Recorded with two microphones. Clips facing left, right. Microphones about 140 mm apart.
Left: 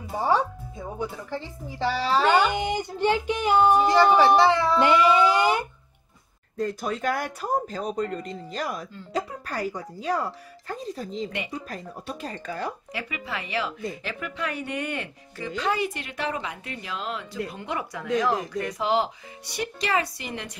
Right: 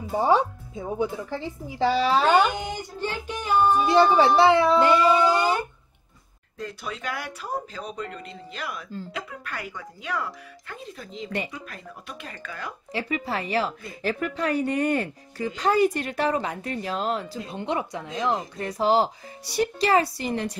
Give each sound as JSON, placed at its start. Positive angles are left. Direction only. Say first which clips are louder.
{"t": 0.2, "sound": "a woman's voice", "louder": "right 2 dB", "side_deg": -15}
{"t": 2.5, "sound": "child singing", "louder": "left 5 dB", "side_deg": 15}
{"t": 3.9, "sound": "a woman's voice", "louder": "right 3 dB", "side_deg": -20}
{"t": 4.7, "sound": "speech", "louder": "even", "side_deg": 20}
{"t": 6.6, "sound": "speech", "louder": "left 6 dB", "side_deg": 45}
{"t": 12.9, "sound": "speech", "louder": "right 5 dB", "side_deg": -35}
{"t": 17.5, "sound": "speech", "louder": "right 4 dB", "side_deg": -25}